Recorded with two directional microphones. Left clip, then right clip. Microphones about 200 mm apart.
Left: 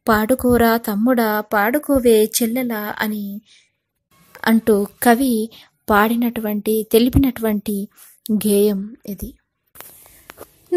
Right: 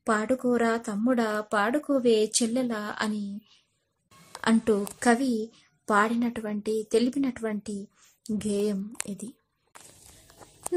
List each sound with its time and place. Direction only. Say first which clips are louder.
0.0 s a woman's voice: left 9 dB; 35° left (ahead or behind)
4.4 s a woman's voice: left 9 dB; 25° left (ahead or behind)
9.0 s a woman's voice: left 7 dB; 20° left (ahead or behind)